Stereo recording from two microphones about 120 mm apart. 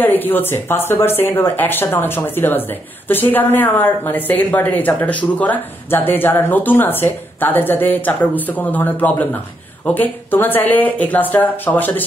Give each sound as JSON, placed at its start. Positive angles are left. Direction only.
{"t": 0.0, "sound": "speech", "side_deg": 15}